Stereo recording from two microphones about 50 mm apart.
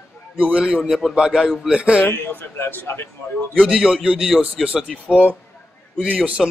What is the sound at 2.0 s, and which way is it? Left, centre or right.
Speech, left.